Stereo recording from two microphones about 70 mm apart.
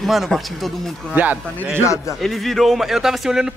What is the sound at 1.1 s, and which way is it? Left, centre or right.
Speech, right.